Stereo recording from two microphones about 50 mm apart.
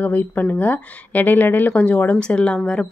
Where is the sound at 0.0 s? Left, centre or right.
Left.